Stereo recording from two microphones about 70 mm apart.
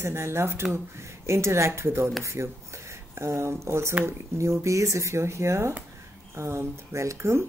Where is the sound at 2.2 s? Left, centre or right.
Right.